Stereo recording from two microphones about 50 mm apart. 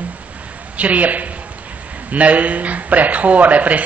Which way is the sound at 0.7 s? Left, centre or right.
Right.